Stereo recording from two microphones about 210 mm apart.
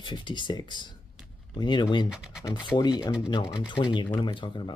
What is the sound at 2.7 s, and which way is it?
Speech, 20° left (ahead or behind).